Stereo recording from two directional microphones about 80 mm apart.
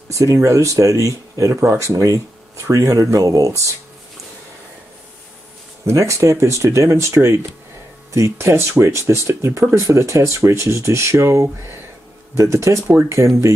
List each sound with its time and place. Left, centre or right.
0.1 s speech: right
5.9 s speech: right